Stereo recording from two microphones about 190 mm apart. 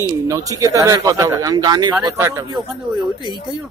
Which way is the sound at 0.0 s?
15° right (ahead or behind).